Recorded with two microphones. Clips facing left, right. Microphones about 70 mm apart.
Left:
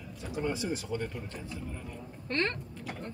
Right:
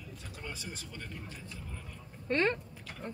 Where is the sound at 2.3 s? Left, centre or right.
Centre.